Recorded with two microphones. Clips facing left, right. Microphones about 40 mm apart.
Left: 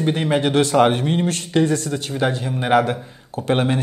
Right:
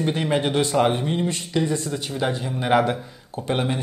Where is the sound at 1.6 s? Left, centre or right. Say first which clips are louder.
Left 4 dB; left.